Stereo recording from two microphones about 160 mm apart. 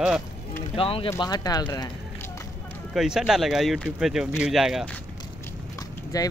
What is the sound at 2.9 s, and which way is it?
Speech, 5° right (ahead or behind).